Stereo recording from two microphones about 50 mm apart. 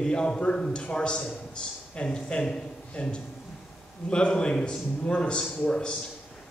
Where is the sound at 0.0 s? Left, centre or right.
Centre.